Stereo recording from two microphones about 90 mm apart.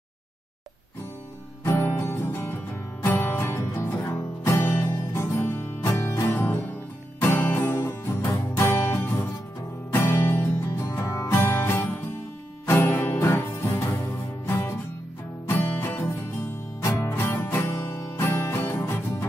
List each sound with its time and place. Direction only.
1.6 s music: 30° left (ahead or behind)